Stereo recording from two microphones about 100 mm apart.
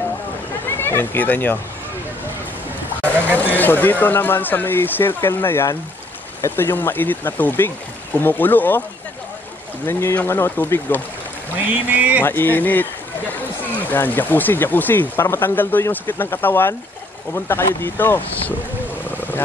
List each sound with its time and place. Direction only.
0.7 s speech: 20° left (ahead or behind)
3.0 s a sound: 15° left (ahead or behind)
3.5 s speech: 20° left (ahead or behind)
9.8 s speech: 25° left (ahead or behind)
11.5 s boat: 15° right (ahead or behind)
12.2 s speech: 20° left (ahead or behind)